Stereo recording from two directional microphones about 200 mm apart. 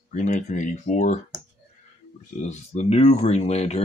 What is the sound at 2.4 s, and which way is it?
Speech, 35° left (ahead or behind).